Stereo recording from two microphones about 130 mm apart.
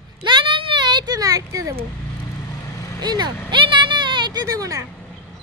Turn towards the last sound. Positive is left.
turn(degrees=-25)  # may be behind; listen again after turning